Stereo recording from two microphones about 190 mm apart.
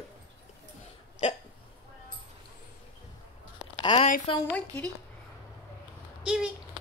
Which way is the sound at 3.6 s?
25° left (ahead or behind).